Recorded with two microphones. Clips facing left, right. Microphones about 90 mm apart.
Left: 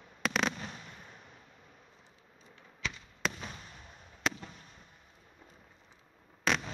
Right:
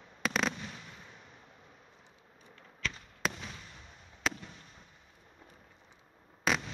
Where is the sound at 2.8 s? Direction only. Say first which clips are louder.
Right 1 dB; 5° left (ahead or behind).